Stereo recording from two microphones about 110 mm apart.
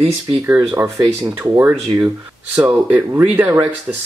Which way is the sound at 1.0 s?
25° right (ahead or behind).